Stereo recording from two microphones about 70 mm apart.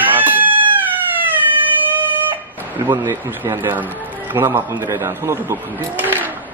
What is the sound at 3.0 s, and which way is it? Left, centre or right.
Speech, right.